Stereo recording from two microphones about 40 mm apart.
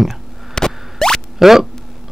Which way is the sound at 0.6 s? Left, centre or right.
Centre.